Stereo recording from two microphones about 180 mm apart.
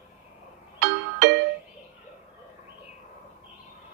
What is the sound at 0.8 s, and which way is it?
Music, 70° right (ahead or behind).